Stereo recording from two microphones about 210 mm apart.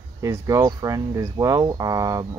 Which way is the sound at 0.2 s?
15° right (ahead or behind).